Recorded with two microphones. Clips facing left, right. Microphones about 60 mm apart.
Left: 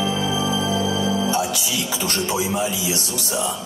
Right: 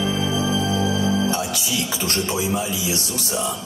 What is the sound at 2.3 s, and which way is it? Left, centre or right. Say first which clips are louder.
Speech: left 1 dB; left.